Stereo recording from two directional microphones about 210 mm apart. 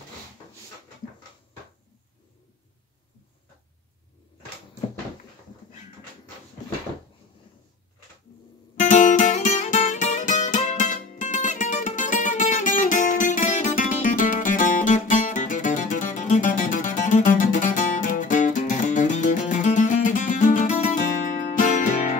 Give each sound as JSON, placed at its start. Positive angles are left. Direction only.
{"t": 8.8, "sound": "music", "side_deg": 35}